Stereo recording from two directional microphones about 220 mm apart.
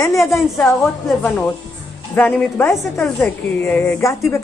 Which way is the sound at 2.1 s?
5° left (ahead or behind).